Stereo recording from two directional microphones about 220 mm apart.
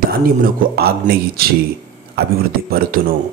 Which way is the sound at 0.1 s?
40° right (ahead or behind).